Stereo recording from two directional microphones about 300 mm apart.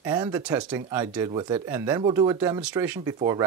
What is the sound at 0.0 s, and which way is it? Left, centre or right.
Speech, centre.